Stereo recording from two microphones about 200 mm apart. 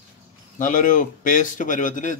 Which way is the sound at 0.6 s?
40° left (ahead or behind).